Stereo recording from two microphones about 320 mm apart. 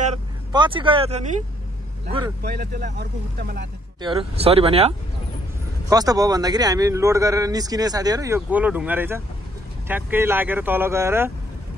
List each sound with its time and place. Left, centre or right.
0.0 s vehicle: centre
2.4 s speech: right
4.0 s speech: centre